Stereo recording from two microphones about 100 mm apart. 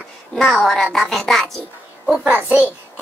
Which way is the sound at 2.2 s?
15° right (ahead or behind).